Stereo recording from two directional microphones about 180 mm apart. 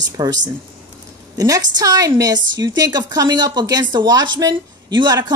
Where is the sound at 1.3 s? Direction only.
20° right (ahead or behind).